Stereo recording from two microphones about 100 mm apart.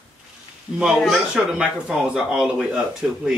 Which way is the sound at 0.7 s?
10° right (ahead or behind).